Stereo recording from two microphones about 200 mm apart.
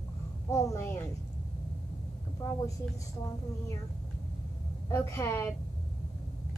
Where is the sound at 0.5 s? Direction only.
15° left (ahead or behind).